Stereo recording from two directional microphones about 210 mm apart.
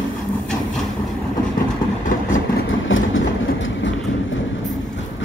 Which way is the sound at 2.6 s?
65° left (ahead or behind).